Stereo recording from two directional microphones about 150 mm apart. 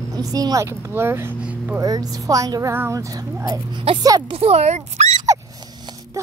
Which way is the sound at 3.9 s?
40° right (ahead or behind).